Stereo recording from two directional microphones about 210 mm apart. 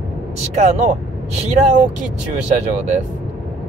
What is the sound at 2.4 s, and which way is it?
Speech, 35° right (ahead or behind).